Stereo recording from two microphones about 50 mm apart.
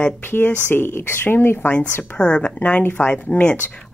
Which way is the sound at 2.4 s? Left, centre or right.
Left.